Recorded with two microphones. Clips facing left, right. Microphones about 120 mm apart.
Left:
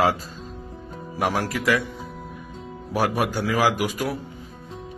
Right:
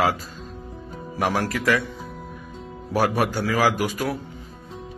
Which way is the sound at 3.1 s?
15° left (ahead or behind).